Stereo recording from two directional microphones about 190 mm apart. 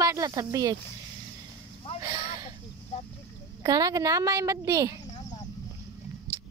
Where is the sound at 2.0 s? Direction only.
20° right (ahead or behind).